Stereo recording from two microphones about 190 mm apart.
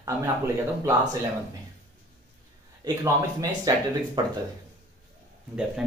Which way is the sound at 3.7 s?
20° right (ahead or behind).